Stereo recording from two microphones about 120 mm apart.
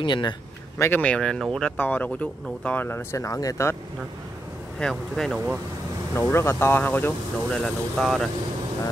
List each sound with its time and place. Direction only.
0.0 s speech: 40° left (ahead or behind)
0.7 s speech: 20° left (ahead or behind)
1.0 s speech: 5° left (ahead or behind); by 3.7 s 25° left (ahead or behind)
4.7 s speech: 5° left (ahead or behind)
6.1 s speech: 20° left (ahead or behind)
7.6 s speech: centre (ahead or behind)